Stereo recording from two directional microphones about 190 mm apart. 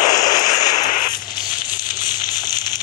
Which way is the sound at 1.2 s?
20° left (ahead or behind).